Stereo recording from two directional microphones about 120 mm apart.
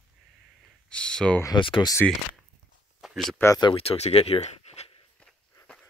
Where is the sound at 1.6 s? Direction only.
45° left (ahead or behind).